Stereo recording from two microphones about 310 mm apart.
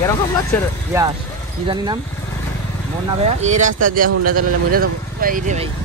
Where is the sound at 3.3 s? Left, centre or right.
Right.